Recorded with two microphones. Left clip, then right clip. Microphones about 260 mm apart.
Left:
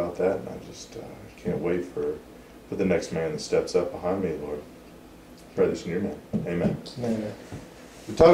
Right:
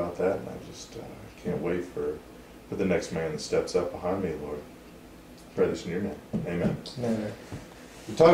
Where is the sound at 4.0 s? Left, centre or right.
Right.